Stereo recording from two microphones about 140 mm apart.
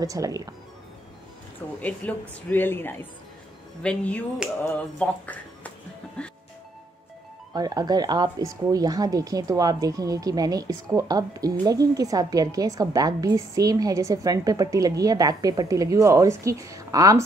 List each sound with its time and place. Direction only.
0.0 s a woman's voice: 25° right (ahead or behind)
1.8 s speech: 10° left (ahead or behind)
7.5 s a woman's voice: 30° right (ahead or behind)